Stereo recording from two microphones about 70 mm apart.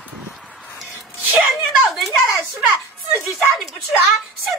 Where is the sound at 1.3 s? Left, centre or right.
Right.